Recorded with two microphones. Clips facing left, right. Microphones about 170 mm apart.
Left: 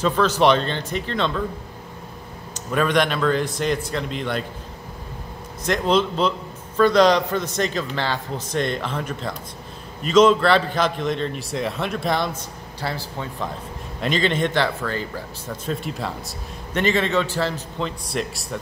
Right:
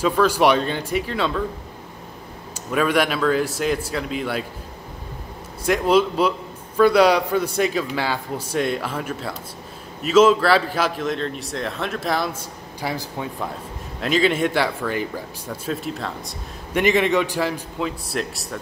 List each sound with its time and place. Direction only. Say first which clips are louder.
0.0 s a man's voice: right 1 dB; 10° right (ahead or behind)
2.5 s a man's voice: even; 5° right (ahead or behind)
5.7 s a man's voice: right 2 dB; 10° right (ahead or behind)
16.7 s a man's voice: right 2 dB; 15° right (ahead or behind)